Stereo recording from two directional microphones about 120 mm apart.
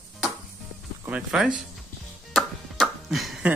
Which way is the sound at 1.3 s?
5° right (ahead or behind).